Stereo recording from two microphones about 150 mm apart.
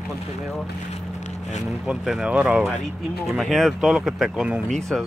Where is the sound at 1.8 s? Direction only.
5° right (ahead or behind).